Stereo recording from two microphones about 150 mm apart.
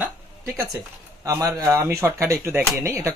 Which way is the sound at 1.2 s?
20° right (ahead or behind).